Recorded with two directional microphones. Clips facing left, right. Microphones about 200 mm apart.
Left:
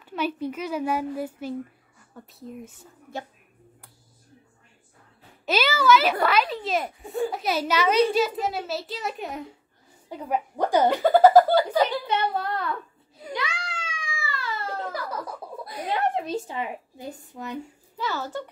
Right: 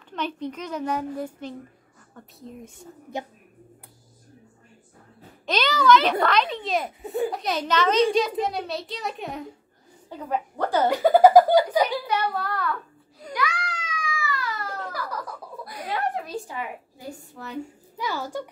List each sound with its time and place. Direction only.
0.1 s a child's voice: 5° left (ahead or behind)
5.5 s a sound: 5° left (ahead or behind)
6.2 s a child's voice: 5° left (ahead or behind)
10.0 s a child's voice: 10° left (ahead or behind)
10.9 s speech: 10° right (ahead or behind)
12.1 s a child's voice: 20° left (ahead or behind)
13.3 s cat: 25° left (ahead or behind)
17.9 s speech: 10° right (ahead or behind)